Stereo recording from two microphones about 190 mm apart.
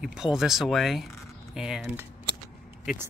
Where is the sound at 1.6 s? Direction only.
5° right (ahead or behind).